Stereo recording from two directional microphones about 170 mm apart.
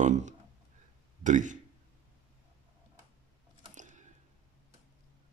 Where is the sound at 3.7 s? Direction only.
45° right (ahead or behind).